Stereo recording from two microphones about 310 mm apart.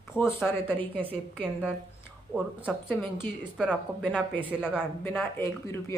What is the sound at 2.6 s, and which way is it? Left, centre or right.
Speech, centre.